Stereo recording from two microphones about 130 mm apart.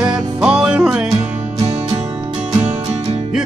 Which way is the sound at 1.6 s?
50° right (ahead or behind).